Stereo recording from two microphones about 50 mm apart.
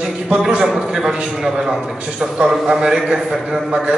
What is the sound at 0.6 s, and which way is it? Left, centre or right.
A man's voice, centre.